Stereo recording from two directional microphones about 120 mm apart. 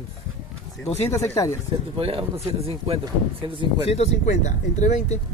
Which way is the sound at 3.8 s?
70° left (ahead or behind).